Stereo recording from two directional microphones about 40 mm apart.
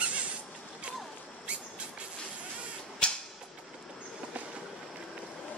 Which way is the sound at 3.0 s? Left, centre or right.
Left.